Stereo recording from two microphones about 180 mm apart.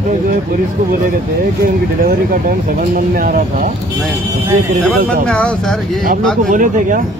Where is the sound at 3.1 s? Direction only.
50° right (ahead or behind).